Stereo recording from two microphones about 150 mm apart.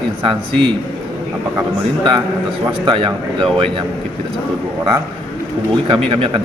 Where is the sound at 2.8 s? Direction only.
35° right (ahead or behind).